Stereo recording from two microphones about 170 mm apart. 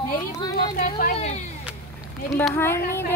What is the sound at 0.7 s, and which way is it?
Speech, 55° left (ahead or behind).